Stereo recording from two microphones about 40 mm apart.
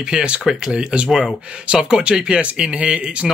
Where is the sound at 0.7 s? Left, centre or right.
Right.